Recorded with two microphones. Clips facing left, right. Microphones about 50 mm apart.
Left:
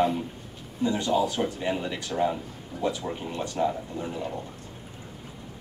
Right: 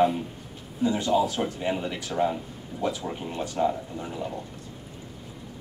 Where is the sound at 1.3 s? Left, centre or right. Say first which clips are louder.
Even; centre.